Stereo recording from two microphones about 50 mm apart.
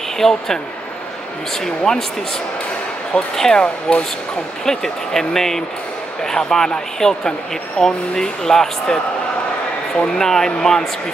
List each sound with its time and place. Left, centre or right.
0.2 s speech: centre
1.6 s speech: centre
3.3 s speech: centre
10.1 s speech: centre